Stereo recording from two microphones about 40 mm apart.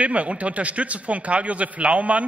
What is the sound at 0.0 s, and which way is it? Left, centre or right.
A man's voice, right.